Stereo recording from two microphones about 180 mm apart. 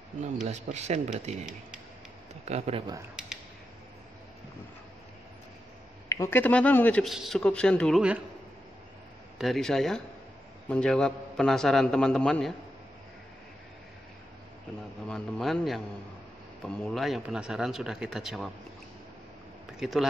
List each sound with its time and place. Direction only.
0.2 s speech: 40° right (ahead or behind)
2.4 s speech: 35° right (ahead or behind)
3.2 s a sound: 5° right (ahead or behind)
6.0 s a man's voice: 15° left (ahead or behind)
9.4 s speech: centre (ahead or behind)
15.0 s speech: 5° left (ahead or behind)
19.8 s speech: centre (ahead or behind)